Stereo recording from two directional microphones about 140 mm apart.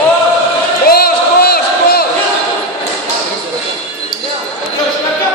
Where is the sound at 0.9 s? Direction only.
90° left.